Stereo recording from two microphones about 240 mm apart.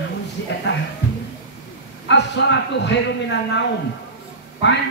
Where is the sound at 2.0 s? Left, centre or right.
Left.